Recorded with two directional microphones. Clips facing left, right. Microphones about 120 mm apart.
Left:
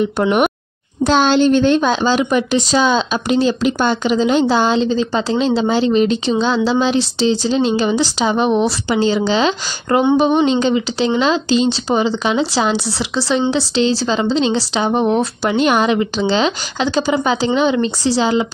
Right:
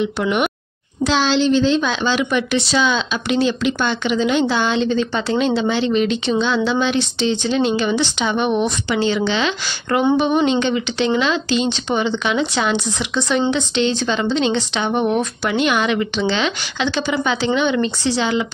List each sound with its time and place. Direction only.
0.0 s a woman's voice: 45° left (ahead or behind)
1.9 s speech: 40° left (ahead or behind)